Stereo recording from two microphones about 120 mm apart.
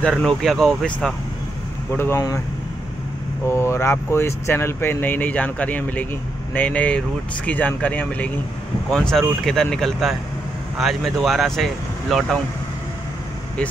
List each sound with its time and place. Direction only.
0.1 s speech: 5° left (ahead or behind)
2.0 s speech: 20° left (ahead or behind)
3.4 s speech: 20° left (ahead or behind); by 12.4 s centre (ahead or behind)